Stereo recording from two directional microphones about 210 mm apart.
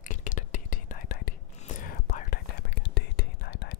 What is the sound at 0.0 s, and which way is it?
Whispering, 40° left (ahead or behind).